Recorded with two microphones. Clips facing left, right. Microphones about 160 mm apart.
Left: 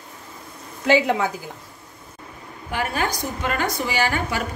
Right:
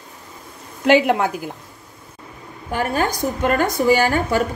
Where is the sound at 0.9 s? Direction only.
60° right (ahead or behind).